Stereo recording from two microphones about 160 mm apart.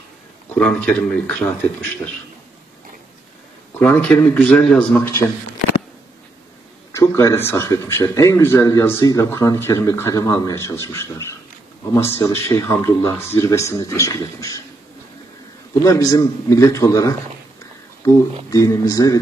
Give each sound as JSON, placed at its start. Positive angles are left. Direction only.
{"t": 0.6, "sound": "speech", "side_deg": 5}
{"t": 3.8, "sound": "speech", "side_deg": 10}
{"t": 6.9, "sound": "a man's voice", "side_deg": 20}
{"t": 15.8, "sound": "a man's voice", "side_deg": 20}